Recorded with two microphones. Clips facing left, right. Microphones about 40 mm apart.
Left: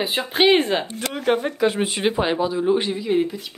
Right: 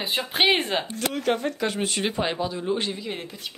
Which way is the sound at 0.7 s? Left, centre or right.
Centre.